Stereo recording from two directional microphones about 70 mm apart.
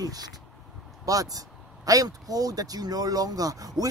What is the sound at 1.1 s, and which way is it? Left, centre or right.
Speech, right.